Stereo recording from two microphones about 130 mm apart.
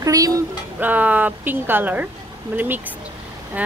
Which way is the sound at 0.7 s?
15° right (ahead or behind).